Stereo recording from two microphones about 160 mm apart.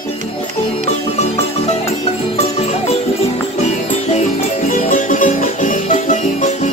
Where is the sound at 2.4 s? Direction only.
40° left (ahead or behind).